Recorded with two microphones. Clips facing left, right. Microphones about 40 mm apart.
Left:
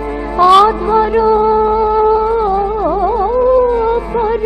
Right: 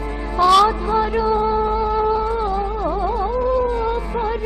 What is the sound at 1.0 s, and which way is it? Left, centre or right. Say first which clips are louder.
Music: left 9 dB; centre.